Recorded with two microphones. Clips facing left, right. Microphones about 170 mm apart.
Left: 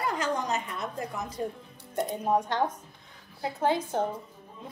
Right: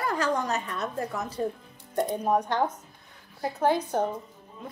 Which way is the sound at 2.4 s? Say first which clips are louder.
Right 1 dB; 20° left (ahead or behind).